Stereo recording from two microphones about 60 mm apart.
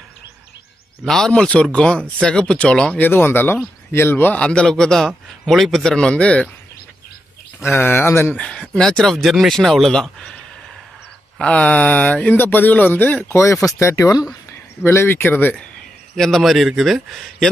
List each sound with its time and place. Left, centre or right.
1.0 s speech: centre
2.9 s speech: left
4.4 s speech: centre
5.9 s speech: centre
7.6 s speech: left
8.4 s speech: centre
11.3 s speech: centre
13.2 s speech: left
14.8 s speech: left
16.2 s speech: centre